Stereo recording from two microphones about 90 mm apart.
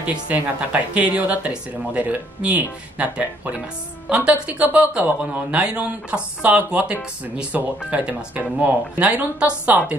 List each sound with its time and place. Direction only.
0.0 s speech: 15° right (ahead or behind)